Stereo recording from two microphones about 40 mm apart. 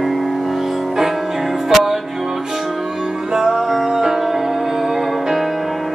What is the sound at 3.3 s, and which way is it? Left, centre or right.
Music, centre.